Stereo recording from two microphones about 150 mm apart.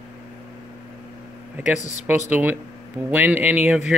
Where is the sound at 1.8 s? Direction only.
55° left (ahead or behind).